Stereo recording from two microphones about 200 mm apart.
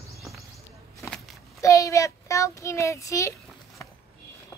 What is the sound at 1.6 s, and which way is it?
Child singing, 15° left (ahead or behind).